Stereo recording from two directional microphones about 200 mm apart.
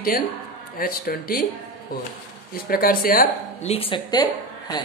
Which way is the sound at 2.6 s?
45° left (ahead or behind).